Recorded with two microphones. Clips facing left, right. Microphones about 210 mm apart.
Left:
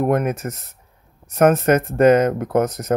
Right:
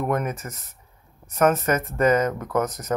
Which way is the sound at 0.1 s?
70° left (ahead or behind).